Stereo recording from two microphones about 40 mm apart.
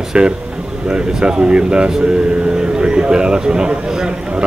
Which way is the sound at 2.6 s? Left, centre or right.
Right.